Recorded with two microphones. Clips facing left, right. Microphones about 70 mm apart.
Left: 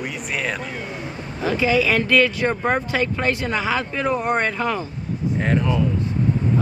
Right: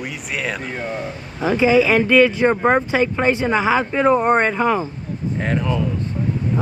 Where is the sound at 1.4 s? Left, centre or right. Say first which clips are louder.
Right 4 dB; right.